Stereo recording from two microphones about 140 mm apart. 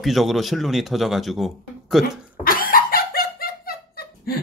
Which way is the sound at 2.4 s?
90° left.